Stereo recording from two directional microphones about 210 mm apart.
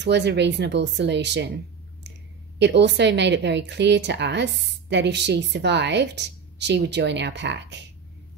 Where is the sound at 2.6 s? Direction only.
55° right (ahead or behind).